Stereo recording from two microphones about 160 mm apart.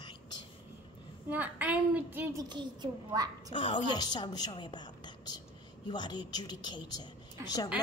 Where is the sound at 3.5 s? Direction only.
30° left (ahead or behind).